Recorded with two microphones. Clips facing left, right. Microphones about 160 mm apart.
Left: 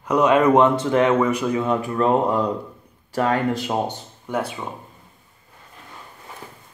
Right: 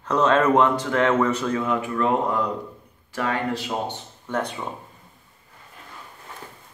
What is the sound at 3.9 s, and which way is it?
Speech, 10° left (ahead or behind).